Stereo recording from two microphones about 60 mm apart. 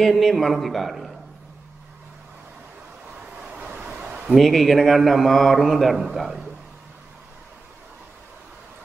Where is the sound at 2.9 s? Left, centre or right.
Centre.